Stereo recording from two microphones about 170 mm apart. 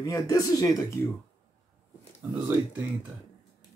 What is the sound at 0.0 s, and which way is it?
Speech, 20° left (ahead or behind).